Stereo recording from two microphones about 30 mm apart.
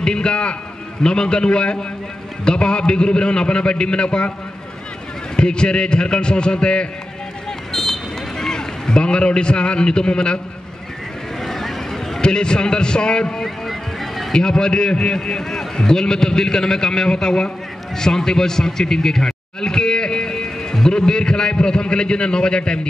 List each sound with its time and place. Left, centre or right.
0.0 s a man's voice: left
5.3 s a man's voice: left
7.7 s run: centre; by 10.4 s left
11.4 s a sound: centre
12.2 s a man's voice: left
13.7 s music: centre
14.3 s a man's voice: left
17.9 s a sound: centre